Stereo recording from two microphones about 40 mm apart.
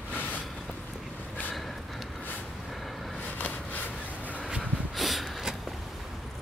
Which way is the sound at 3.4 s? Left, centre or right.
Left.